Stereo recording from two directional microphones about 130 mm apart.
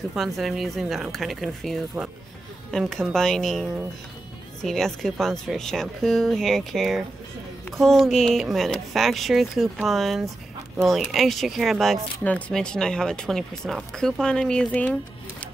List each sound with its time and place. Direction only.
0.1 s speech: centre (ahead or behind)